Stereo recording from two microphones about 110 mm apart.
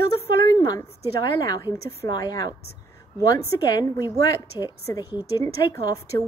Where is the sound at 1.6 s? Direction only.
40° left (ahead or behind).